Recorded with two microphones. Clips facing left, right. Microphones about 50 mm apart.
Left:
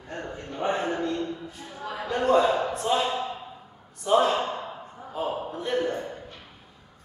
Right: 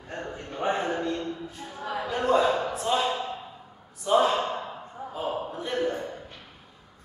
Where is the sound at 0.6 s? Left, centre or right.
Centre.